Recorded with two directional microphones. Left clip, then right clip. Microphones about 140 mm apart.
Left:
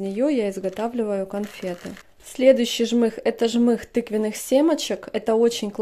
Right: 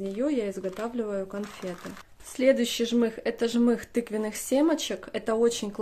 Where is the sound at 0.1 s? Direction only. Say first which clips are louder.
Left 7 dB; 40° left (ahead or behind).